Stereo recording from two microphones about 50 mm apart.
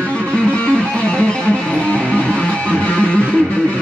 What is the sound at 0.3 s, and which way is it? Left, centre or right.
Music, left.